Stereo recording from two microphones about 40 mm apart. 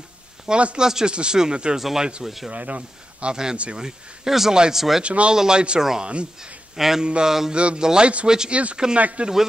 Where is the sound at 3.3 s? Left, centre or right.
Centre.